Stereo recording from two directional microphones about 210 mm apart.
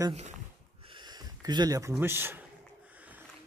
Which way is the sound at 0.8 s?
20° right (ahead or behind).